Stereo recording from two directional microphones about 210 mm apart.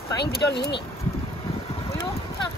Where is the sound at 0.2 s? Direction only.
50° left (ahead or behind).